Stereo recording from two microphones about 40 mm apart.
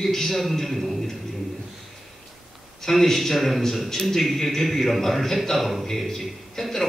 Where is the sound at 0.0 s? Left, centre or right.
Centre.